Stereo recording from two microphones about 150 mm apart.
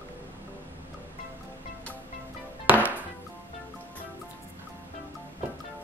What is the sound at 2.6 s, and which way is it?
Music, 10° right (ahead or behind).